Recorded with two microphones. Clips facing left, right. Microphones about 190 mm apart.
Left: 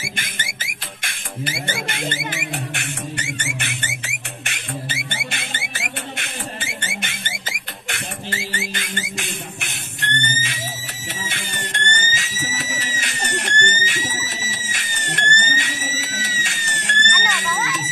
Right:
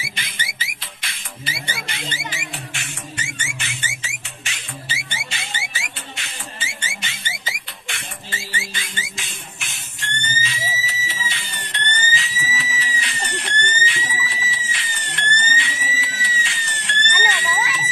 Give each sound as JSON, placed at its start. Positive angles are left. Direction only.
{"t": 0.0, "sound": "music", "side_deg": 50}